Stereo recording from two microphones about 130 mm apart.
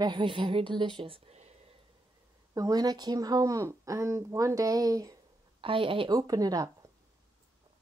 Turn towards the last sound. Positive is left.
turn(degrees=-25)  # may be behind; listen again after turning